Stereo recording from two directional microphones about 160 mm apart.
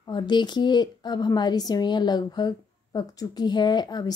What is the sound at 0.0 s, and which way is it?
A woman's voice, 30° left (ahead or behind).